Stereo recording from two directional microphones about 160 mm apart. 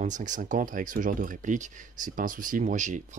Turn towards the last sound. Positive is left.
turn(degrees=-50)  # may be behind; listen again after turning